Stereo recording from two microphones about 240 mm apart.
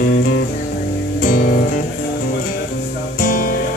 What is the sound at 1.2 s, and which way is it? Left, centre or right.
Music, left.